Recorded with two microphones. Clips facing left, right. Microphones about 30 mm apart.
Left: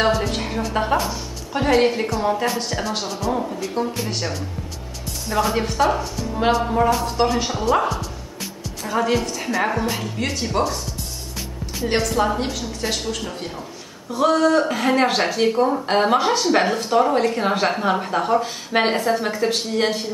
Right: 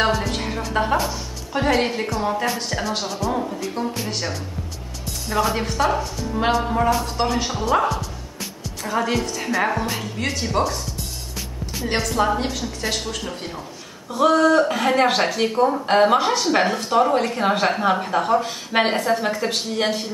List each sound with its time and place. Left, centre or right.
0.0 s music: centre
1.0 s speech: centre
11.9 s speech: centre